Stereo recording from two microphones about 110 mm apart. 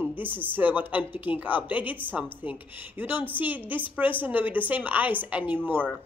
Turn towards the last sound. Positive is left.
turn(degrees=-20)  # may be behind; listen again after turning